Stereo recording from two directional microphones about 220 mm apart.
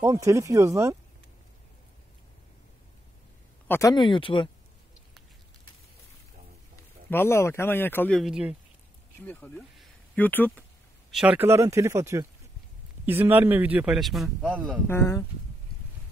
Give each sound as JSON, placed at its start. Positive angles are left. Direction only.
{"t": 0.0, "sound": "a man's voice", "side_deg": -15}
{"t": 3.6, "sound": "speech", "side_deg": 10}
{"t": 3.9, "sound": "speech", "side_deg": 20}
{"t": 7.1, "sound": "speech", "side_deg": 10}
{"t": 9.2, "sound": "speech", "side_deg": 10}
{"t": 11.1, "sound": "a man's voice", "side_deg": -5}
{"t": 14.9, "sound": "speech", "side_deg": 10}